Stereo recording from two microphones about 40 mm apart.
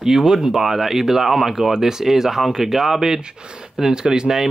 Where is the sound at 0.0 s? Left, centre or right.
Centre.